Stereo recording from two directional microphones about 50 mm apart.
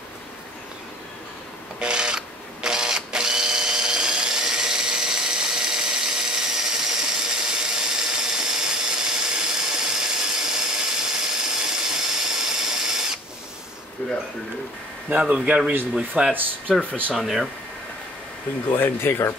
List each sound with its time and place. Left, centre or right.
1.8 s drill: centre
15.0 s speech: right
17.1 s speech: centre
18.8 s speech: left